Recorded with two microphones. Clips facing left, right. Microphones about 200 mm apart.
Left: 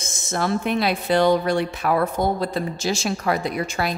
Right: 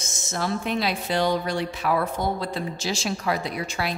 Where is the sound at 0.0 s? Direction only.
55° left (ahead or behind).